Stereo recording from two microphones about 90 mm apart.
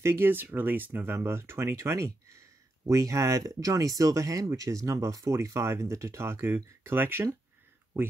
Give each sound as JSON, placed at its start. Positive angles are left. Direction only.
{"t": 0.0, "sound": "speech", "side_deg": -25}